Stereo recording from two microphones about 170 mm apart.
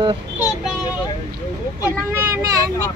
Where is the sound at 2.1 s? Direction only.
15° right (ahead or behind).